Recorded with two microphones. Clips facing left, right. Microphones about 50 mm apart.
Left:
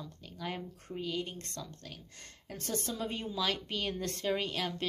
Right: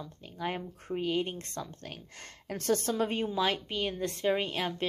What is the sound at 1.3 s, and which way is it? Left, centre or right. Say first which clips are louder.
Speech: right 5 dB; right.